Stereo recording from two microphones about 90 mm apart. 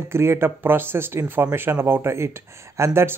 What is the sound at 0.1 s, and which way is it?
Speech, 30° right (ahead or behind).